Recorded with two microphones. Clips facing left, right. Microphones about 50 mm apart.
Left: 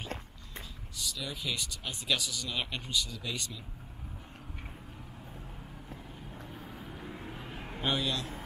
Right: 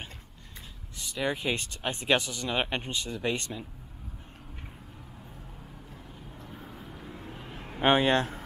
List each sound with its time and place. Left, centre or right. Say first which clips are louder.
0.9 s speech: right 8 dB; right
6.5 s vehicle: right 2 dB; centre
7.8 s speech: right 10 dB; right